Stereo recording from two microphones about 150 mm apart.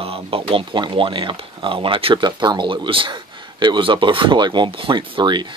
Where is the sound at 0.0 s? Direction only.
40° right (ahead or behind).